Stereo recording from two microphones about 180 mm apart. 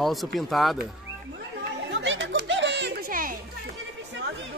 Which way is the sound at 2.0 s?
90° right.